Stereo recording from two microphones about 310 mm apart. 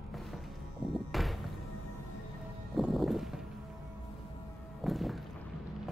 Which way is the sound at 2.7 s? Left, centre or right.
Centre.